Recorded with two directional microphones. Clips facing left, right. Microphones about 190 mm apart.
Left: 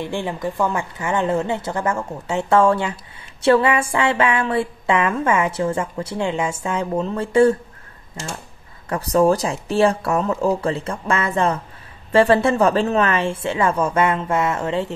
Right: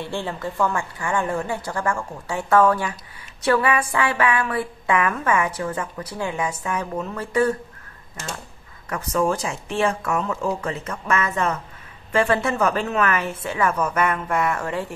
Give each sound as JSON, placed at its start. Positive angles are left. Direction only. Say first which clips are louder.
{"t": 0.0, "sound": "a woman's voice", "louder": "left 3 dB", "side_deg": 15}
{"t": 8.8, "sound": "a woman's voice", "louder": "left 6 dB", "side_deg": 35}